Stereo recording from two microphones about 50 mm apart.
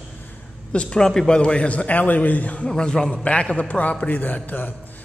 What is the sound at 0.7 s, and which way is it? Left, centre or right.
A man's voice, centre.